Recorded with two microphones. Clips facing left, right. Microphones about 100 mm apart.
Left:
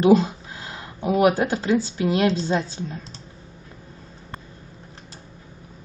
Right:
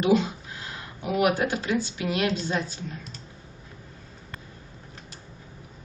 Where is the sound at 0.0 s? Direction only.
35° left (ahead or behind).